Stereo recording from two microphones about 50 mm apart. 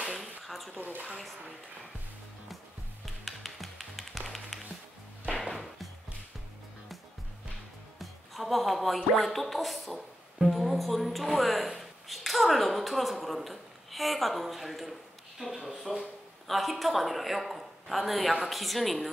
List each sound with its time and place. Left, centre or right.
0.1 s a sound: centre
0.7 s speech: right
3.3 s music: centre
8.0 s music: centre
16.4 s speech: centre